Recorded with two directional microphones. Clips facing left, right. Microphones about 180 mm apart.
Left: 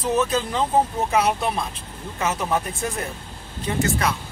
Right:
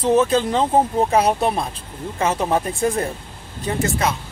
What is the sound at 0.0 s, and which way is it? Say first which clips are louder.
Speech: right 5 dB; 30° right (ahead or behind).